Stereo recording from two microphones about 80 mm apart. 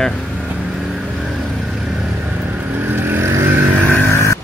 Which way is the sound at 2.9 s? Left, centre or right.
Right.